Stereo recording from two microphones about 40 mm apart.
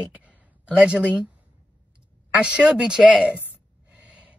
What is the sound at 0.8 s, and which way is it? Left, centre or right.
Speech, right.